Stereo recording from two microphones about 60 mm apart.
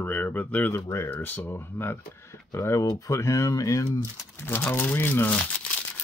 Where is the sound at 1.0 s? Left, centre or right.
Left.